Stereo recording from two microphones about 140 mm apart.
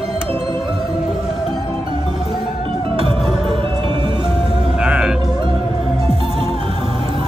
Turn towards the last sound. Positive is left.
turn(degrees=-40)  # may be behind; listen again after turning